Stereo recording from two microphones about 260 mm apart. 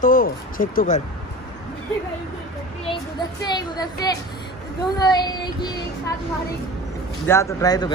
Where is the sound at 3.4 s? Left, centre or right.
Centre.